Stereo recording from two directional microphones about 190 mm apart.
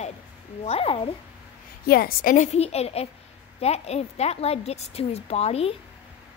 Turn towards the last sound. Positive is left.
turn(degrees=35)  # may be behind; listen again after turning